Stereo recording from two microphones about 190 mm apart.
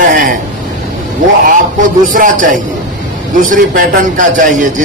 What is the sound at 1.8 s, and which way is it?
Speech, 45° right (ahead or behind).